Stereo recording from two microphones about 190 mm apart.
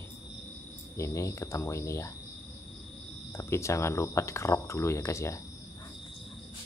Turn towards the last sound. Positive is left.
turn(degrees=15)  # may be behind; listen again after turning